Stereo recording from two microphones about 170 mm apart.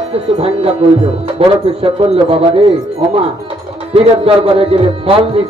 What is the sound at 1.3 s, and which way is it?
A man's voice, 35° right (ahead or behind).